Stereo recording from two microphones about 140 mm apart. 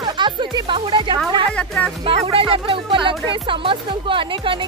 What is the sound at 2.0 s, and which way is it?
Speech, 40° right (ahead or behind).